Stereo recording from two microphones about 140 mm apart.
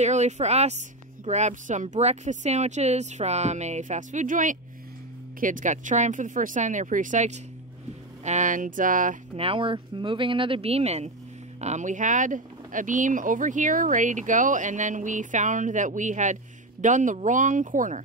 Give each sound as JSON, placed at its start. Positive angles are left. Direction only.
{"t": 0.0, "sound": "speech", "side_deg": -55}
{"t": 9.4, "sound": "speech", "side_deg": -40}